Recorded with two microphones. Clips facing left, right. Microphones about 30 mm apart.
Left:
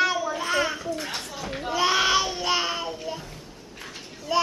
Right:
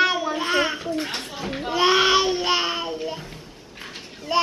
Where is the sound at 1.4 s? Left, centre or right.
Centre.